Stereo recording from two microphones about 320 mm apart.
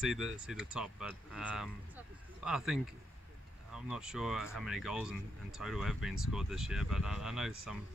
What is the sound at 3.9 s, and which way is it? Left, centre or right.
Speech, centre.